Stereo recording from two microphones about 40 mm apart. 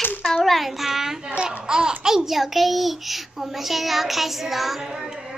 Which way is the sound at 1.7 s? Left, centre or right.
Centre.